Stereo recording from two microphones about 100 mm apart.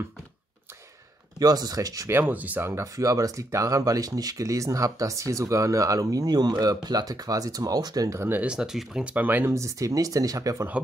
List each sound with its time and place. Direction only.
1.4 s speech: 40° right (ahead or behind)
2.0 s speech: 20° right (ahead or behind)
8.3 s speech: 10° right (ahead or behind)
9.5 s speech: 30° right (ahead or behind)